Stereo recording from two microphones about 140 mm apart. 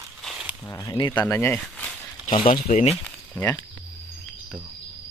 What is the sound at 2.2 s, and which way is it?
Speech, 40° left (ahead or behind).